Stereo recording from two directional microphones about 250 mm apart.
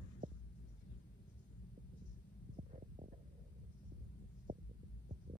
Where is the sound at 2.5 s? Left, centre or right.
Right.